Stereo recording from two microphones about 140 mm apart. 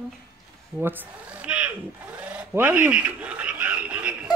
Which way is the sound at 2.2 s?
10° right (ahead or behind).